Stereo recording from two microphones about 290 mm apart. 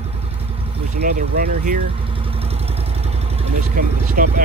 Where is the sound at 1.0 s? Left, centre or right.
Right.